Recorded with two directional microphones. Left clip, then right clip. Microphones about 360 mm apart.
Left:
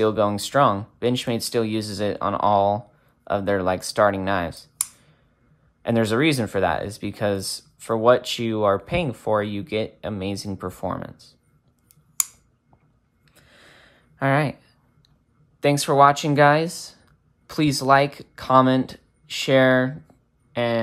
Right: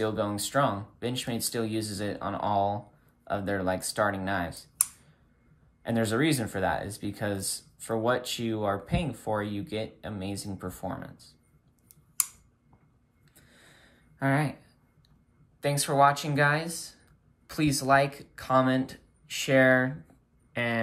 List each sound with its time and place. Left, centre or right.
0.0 s speech: centre
5.8 s speech: centre
13.3 s a sound: centre
15.6 s speech: centre